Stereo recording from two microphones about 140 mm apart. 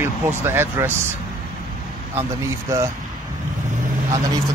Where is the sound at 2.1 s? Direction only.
20° right (ahead or behind).